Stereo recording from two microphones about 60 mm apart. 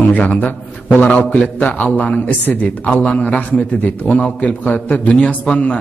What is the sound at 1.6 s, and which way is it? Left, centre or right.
A man's voice, left.